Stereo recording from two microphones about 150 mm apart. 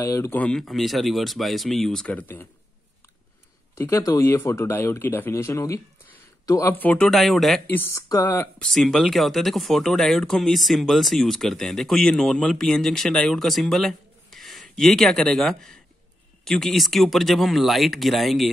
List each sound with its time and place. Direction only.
0.0 s speech: 20° left (ahead or behind)
0.4 s speech: 5° left (ahead or behind)
3.7 s speech: 20° left (ahead or behind)
8.5 s speech: centre (ahead or behind)